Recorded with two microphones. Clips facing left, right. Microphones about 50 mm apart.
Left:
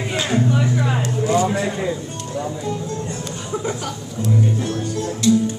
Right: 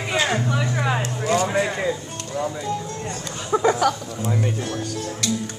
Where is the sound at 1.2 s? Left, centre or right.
Right.